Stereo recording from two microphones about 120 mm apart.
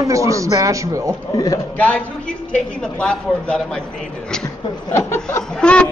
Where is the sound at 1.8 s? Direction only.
10° left (ahead or behind).